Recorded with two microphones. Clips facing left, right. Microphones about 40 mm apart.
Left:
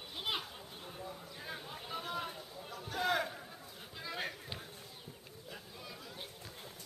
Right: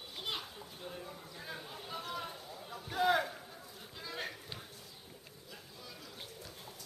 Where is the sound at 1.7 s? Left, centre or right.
Centre.